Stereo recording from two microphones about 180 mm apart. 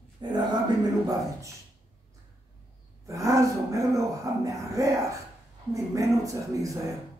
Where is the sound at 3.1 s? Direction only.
15° right (ahead or behind).